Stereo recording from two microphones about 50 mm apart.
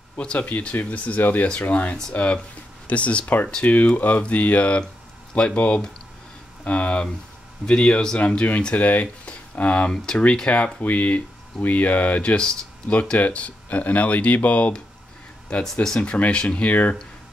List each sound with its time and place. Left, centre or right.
0.2 s speech: left
0.5 s speech: left
1.5 s a man's voice: left
8.5 s speech: left
12.2 s speech: centre
15.6 s a man's voice: centre
16.0 s speech: left